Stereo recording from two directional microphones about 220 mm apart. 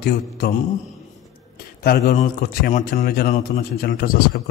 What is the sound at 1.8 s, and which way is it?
A man's voice, 45° left (ahead or behind).